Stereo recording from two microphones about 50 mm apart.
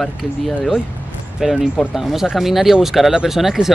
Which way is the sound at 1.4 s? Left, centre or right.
Centre.